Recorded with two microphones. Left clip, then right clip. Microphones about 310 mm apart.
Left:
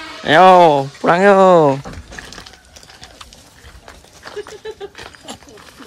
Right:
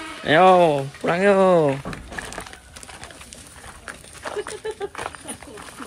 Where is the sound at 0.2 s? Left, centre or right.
Centre.